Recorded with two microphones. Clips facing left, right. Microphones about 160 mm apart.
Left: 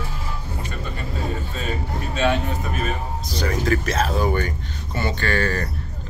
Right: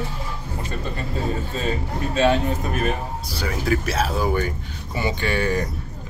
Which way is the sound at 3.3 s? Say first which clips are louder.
Left 2 dB; 5° right (ahead or behind).